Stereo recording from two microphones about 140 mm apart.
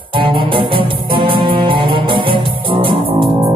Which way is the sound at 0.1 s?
35° right (ahead or behind).